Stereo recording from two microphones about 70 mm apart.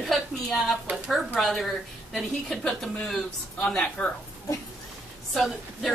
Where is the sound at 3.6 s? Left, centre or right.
Left.